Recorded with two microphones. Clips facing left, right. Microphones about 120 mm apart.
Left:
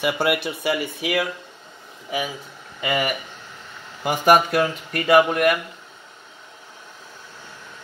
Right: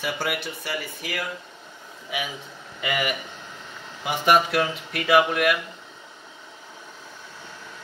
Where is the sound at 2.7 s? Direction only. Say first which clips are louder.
Left 3 dB; 25° left (ahead or behind).